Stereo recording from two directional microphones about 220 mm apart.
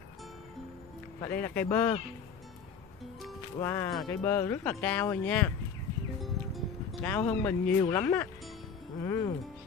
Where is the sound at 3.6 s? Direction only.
10° left (ahead or behind).